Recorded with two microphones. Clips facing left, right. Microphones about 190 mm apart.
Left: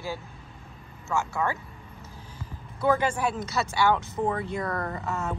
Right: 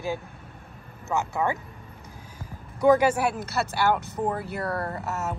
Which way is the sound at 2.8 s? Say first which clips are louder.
Right 5 dB; 10° right (ahead or behind).